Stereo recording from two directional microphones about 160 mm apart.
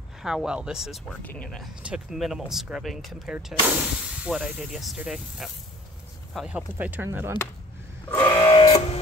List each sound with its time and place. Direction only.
0.2 s speech: 5° right (ahead or behind)
1.2 s speech: 10° left (ahead or behind); by 7.3 s 15° right (ahead or behind)
8.4 s a sound: 30° left (ahead or behind)